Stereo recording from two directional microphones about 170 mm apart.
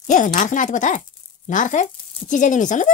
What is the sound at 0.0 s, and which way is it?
A woman's voice, 45° left (ahead or behind).